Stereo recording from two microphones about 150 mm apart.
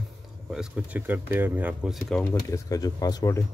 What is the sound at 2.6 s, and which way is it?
Speech, 25° left (ahead or behind).